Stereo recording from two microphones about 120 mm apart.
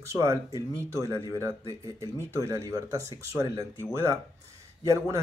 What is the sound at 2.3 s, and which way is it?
Speech, 25° right (ahead or behind).